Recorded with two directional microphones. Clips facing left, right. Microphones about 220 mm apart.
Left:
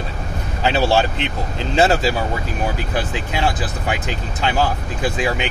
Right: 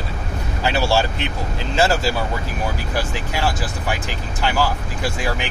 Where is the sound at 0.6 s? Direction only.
20° left (ahead or behind).